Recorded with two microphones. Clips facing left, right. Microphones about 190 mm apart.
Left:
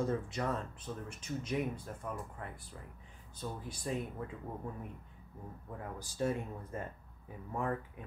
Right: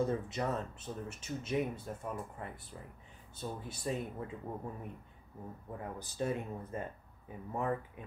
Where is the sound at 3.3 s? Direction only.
25° right (ahead or behind).